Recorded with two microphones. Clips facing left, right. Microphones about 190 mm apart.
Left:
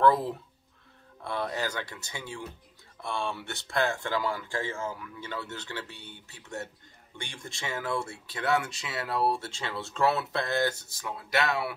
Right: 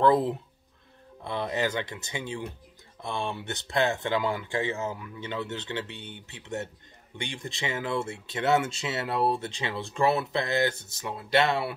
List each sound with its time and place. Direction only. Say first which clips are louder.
0.0 s speech: right 2 dB; 20° right (ahead or behind)